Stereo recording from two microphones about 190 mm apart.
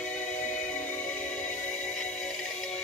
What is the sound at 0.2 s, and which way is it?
Music, 40° left (ahead or behind).